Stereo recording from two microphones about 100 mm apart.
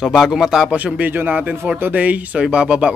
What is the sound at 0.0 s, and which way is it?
Speech, centre (ahead or behind).